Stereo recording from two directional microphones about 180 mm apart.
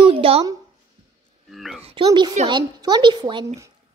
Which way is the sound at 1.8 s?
25° right (ahead or behind).